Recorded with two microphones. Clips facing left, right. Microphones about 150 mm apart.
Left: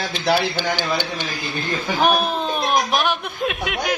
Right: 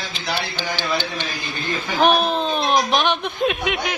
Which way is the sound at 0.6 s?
15° left (ahead or behind).